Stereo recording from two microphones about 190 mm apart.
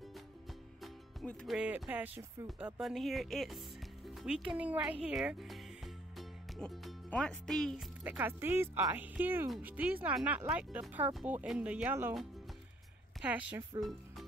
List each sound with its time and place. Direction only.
0.8 s speech: 5° left (ahead or behind)
13.2 s speech: 5° right (ahead or behind)